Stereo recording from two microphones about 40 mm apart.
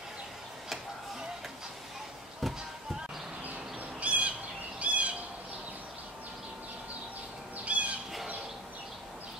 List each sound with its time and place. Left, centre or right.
2.4 s a sound: centre
4.0 s bird: right
4.7 s squawk: right
7.5 s bird: right